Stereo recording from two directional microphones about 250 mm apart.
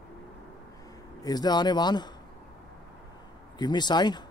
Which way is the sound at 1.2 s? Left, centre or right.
Centre.